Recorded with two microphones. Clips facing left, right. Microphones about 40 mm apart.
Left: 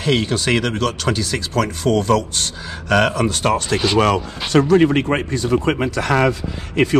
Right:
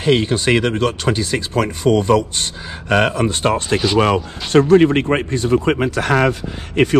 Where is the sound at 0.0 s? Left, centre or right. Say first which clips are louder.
Right 3 dB; right.